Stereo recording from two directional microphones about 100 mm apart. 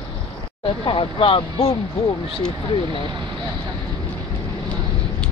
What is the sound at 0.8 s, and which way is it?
Speech, 60° left (ahead or behind).